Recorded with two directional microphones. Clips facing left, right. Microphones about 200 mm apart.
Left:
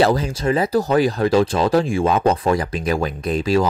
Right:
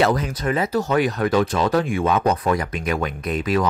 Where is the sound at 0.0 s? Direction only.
30° left (ahead or behind).